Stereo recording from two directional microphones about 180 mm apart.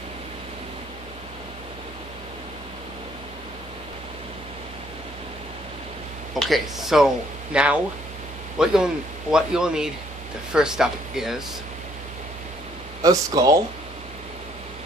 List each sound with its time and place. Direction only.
6.3 s speech: centre (ahead or behind)
13.0 s speech: 20° right (ahead or behind)